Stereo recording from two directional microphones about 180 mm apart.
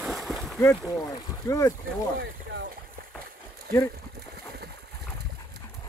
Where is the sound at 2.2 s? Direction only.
90° right.